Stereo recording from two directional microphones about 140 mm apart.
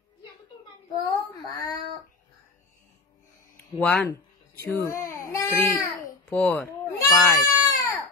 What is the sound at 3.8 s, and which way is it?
Speech, 10° left (ahead or behind).